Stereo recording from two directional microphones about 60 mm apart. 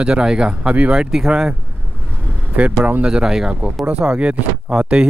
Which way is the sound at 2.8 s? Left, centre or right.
Right.